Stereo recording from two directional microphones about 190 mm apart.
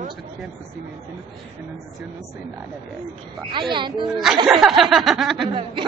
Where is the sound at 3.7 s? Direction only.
25° right (ahead or behind).